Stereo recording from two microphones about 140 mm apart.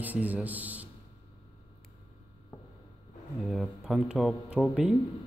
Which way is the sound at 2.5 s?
20° left (ahead or behind).